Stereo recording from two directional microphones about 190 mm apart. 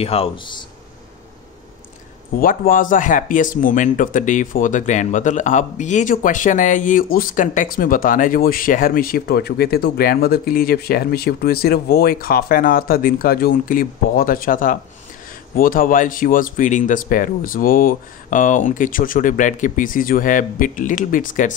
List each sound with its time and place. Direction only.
0.0 s speech: 30° left (ahead or behind)
2.3 s speech: 50° left (ahead or behind)